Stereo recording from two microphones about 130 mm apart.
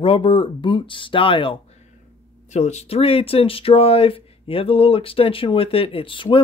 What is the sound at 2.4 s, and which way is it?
Speech, 60° left (ahead or behind).